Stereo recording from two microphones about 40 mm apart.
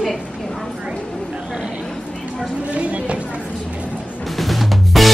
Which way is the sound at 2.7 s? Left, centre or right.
Right.